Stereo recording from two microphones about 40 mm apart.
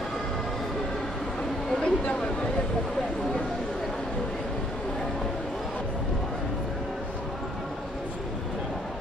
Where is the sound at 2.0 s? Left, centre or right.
Left.